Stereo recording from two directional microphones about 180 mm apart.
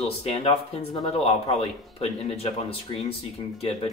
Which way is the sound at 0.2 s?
35° left (ahead or behind).